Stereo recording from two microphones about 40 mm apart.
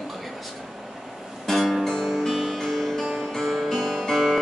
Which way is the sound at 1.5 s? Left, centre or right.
Centre.